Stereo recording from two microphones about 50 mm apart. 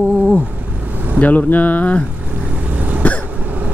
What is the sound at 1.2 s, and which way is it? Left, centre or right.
Speech, left.